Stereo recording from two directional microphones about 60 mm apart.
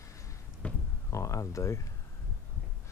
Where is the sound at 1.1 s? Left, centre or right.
Left.